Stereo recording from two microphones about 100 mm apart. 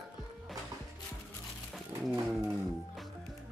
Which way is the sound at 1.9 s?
40° right (ahead or behind).